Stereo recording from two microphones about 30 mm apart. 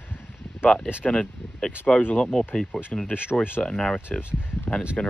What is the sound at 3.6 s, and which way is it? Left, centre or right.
Speech, left.